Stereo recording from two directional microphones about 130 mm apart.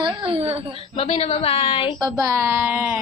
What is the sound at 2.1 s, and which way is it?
Speech, 25° right (ahead or behind).